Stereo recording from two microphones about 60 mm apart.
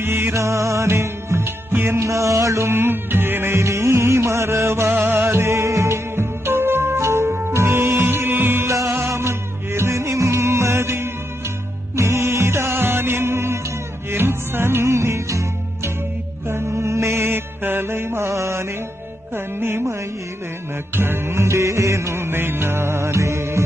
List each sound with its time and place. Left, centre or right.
0.0 s music: right
2.7 s music: right
6.1 s music: right
8.6 s music: right
16.4 s mantra: right
19.3 s music: right